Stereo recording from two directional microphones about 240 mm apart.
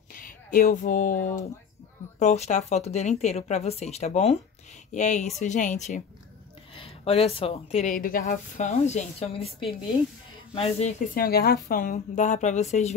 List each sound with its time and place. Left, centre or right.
0.1 s a woman's voice: left